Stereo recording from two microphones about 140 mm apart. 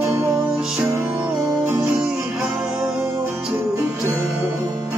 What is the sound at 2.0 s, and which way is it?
Music, 5° right (ahead or behind).